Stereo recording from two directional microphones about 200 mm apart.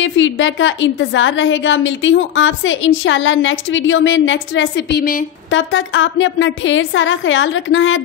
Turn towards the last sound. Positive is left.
turn(degrees=70)  # may be behind; listen again after turning